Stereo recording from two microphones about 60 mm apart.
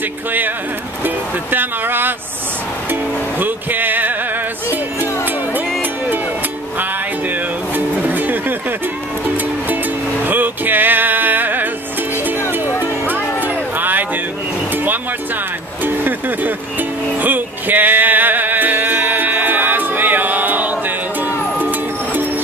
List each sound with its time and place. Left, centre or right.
1.0 s speech: right
2.9 s music: right
5.8 s music: right
10.2 s music: right
13.4 s a sound: right
15.8 s music: right